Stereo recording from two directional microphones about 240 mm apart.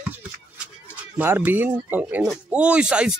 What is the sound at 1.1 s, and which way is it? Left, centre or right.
Speech, centre.